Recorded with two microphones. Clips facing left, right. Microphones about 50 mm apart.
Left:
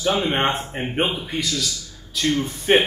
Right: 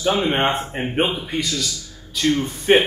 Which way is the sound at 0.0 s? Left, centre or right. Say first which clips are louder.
Right 1 dB; centre.